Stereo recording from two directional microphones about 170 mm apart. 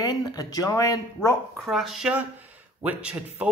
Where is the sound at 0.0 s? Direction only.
25° left (ahead or behind).